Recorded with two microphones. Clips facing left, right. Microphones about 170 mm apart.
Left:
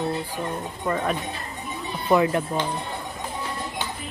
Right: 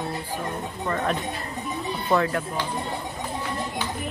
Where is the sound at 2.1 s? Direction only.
20° left (ahead or behind).